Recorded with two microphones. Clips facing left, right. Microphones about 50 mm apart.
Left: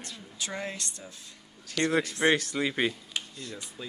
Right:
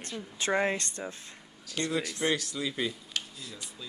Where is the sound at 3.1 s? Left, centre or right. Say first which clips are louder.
Even; centre.